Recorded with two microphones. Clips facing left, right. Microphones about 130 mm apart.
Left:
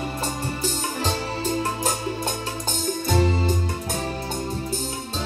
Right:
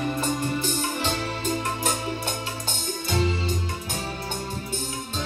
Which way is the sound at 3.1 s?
45° left (ahead or behind).